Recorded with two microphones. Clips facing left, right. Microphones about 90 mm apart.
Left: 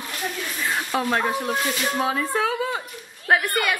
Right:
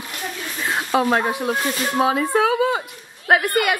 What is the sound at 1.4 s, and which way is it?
Speech, 35° right (ahead or behind).